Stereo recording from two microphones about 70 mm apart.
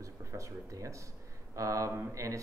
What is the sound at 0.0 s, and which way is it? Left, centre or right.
Speech, right.